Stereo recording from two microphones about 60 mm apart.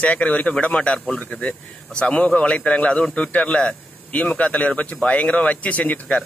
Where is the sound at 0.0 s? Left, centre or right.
Left.